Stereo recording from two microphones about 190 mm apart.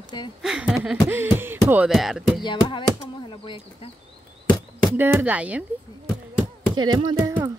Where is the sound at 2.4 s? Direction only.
25° left (ahead or behind).